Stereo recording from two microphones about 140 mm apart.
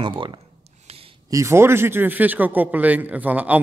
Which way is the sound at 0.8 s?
45° right (ahead or behind).